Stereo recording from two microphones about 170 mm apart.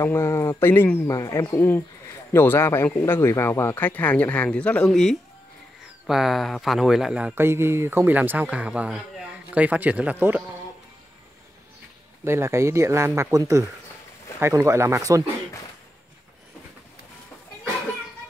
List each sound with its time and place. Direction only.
0.0 s speech: 15° left (ahead or behind); by 10.4 s 10° right (ahead or behind)
12.3 s speech: 15° right (ahead or behind)